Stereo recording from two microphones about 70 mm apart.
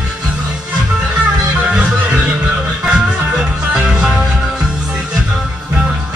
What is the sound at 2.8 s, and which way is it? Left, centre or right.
Music, centre.